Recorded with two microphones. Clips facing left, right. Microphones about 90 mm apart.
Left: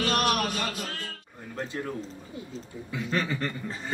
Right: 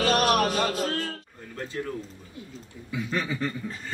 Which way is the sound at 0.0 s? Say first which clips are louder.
Right 4 dB; 35° right (ahead or behind).